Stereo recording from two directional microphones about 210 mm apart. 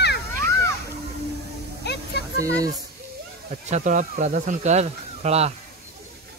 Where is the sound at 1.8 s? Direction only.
55° left (ahead or behind).